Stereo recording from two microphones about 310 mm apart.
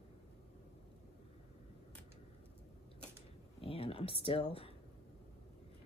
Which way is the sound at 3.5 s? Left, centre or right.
Centre.